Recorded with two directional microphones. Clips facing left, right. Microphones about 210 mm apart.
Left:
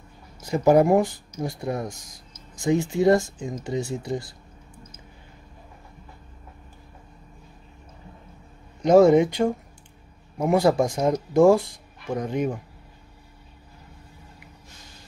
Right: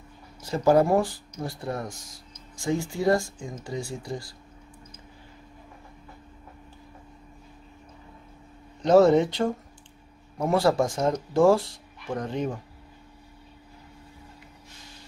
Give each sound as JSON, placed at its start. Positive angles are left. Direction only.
{"t": 0.4, "sound": "speech", "side_deg": 15}
{"t": 8.8, "sound": "speech", "side_deg": 10}